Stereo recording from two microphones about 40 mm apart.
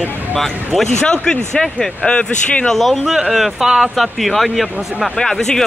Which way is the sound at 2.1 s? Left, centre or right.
Left.